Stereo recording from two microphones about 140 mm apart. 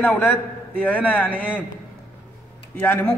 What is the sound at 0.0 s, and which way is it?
A man's voice, 10° left (ahead or behind).